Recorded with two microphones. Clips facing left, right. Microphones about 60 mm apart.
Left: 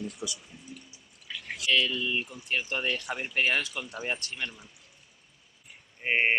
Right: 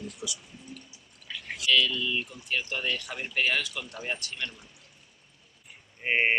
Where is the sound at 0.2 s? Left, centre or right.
Left.